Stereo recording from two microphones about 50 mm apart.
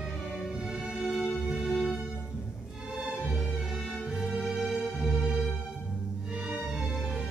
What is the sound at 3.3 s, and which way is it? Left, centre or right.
Music, centre.